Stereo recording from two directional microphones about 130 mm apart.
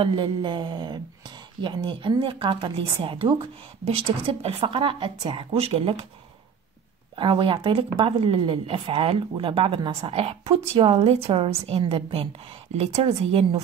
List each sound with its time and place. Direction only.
0.0 s speech: 35° right (ahead or behind)
7.2 s speech: 40° right (ahead or behind)